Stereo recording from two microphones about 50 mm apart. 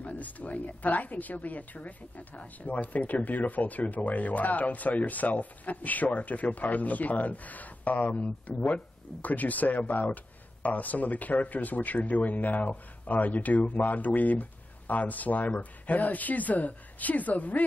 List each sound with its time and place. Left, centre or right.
0.0 s a woman's voice: left